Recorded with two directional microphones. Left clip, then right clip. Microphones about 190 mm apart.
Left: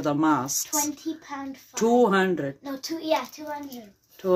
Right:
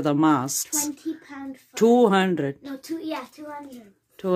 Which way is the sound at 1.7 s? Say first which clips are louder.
Right 3 dB; 50° right (ahead or behind).